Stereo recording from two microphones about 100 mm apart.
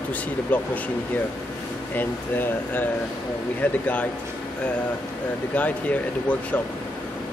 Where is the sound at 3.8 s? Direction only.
15° left (ahead or behind).